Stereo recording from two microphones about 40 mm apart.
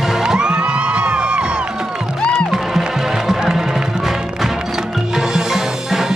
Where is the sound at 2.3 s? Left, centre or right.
Centre.